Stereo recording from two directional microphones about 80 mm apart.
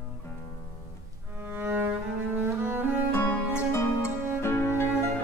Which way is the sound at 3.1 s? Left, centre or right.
Left.